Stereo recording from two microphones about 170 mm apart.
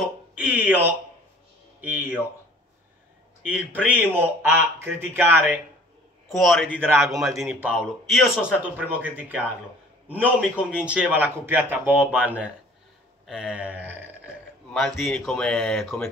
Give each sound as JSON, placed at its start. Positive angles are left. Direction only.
{"t": 0.4, "sound": "speech", "side_deg": -10}
{"t": 3.4, "sound": "speech", "side_deg": -10}
{"t": 6.2, "sound": "speech", "side_deg": 0}
{"t": 6.9, "sound": "a man's voice", "side_deg": -20}
{"t": 7.7, "sound": "a man's voice", "side_deg": 0}
{"t": 14.7, "sound": "speech", "side_deg": 0}